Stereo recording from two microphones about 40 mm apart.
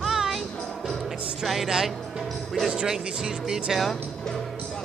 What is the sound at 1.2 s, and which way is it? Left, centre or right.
Speech, right.